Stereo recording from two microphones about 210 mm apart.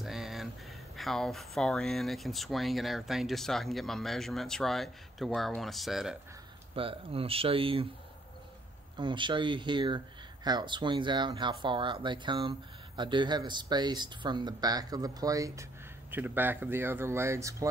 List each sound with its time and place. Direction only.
0.0 s a sound: centre (ahead or behind)
0.9 s speech: centre (ahead or behind)
6.7 s speech: 25° right (ahead or behind)
8.9 s speech: 20° right (ahead or behind)